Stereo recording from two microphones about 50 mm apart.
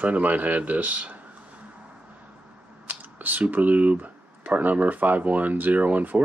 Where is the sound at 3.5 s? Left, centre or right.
Right.